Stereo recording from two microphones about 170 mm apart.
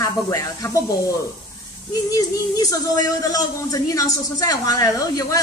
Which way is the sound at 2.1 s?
20° left (ahead or behind).